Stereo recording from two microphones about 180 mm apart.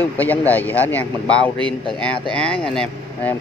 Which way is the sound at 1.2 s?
25° right (ahead or behind).